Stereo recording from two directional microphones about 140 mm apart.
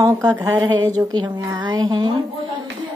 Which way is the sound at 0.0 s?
20° right (ahead or behind).